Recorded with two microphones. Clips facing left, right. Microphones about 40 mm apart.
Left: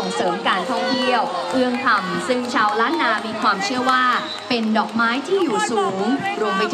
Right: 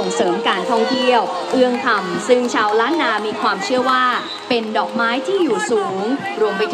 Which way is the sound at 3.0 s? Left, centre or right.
Centre.